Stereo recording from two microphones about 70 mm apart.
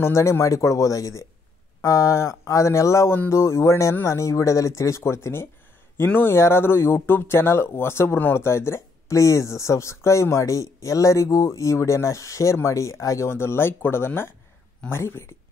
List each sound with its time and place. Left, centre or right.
0.0 s speech: left